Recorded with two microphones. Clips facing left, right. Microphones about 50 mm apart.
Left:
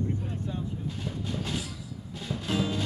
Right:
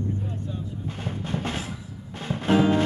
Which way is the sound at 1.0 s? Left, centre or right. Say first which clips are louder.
Right 6 dB; right.